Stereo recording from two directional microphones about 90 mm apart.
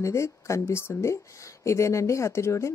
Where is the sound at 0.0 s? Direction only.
35° left (ahead or behind).